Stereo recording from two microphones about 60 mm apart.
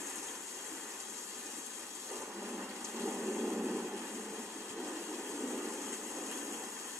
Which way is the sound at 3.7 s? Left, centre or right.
Centre.